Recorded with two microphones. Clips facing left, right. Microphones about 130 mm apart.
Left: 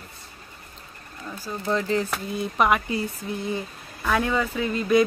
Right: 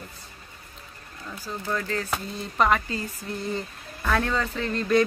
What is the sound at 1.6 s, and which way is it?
Speech, 20° left (ahead or behind).